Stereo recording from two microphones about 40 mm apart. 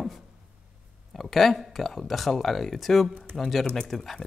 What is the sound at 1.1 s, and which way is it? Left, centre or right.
Speech, centre.